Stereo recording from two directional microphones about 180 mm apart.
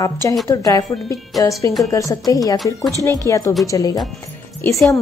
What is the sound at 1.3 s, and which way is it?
Speech, centre (ahead or behind).